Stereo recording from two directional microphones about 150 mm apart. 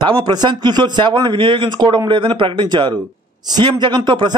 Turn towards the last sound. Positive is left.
turn(degrees=-30)  # may be behind; listen again after turning